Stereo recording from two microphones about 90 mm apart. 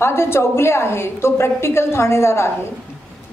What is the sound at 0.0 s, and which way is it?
A woman's voice, 30° left (ahead or behind).